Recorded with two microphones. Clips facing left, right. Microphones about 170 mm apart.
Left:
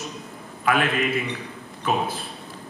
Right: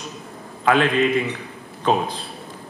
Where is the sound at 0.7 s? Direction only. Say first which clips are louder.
Right 5 dB; 30° right (ahead or behind).